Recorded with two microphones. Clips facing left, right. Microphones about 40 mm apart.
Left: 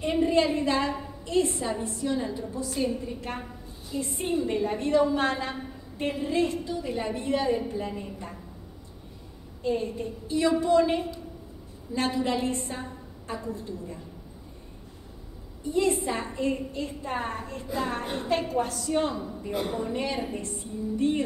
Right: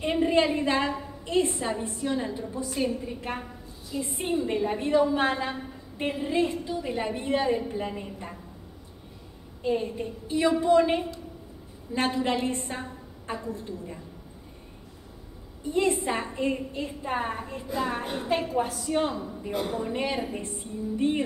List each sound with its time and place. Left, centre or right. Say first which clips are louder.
0.0 s a woman's voice: even; right
3.1 s a woman's voice: right 1 dB; centre
9.6 s a woman's voice: right 1 dB; right
15.6 s a woman's voice: even; right; by 19.8 s centre
19.8 s a woman's voice: right 1 dB; right